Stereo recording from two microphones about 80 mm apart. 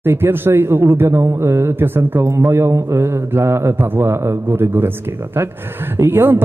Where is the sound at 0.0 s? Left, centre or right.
Right.